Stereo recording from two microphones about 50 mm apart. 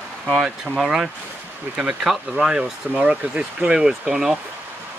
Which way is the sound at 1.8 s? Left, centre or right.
Centre.